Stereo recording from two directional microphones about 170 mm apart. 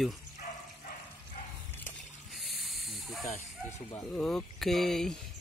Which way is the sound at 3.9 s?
10° left (ahead or behind).